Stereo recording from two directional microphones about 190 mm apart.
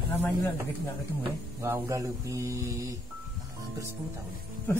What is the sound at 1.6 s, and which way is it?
Speech, 15° right (ahead or behind).